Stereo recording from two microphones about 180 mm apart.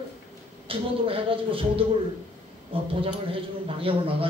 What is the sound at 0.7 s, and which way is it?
A man's voice, 30° right (ahead or behind).